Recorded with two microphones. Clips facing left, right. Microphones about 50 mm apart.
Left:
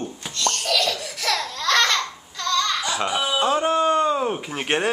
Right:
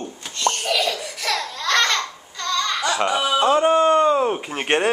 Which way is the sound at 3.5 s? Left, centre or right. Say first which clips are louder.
Right 4 dB; centre.